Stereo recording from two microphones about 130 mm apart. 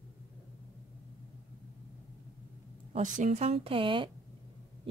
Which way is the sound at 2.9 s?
75° right (ahead or behind).